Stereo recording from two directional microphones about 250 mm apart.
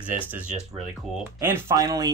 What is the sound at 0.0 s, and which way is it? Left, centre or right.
Speech, centre.